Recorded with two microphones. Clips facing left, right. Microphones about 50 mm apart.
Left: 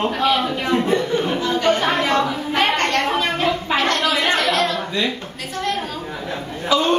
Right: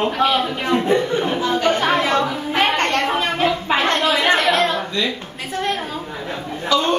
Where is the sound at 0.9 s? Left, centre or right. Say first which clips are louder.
Right 1 dB; centre.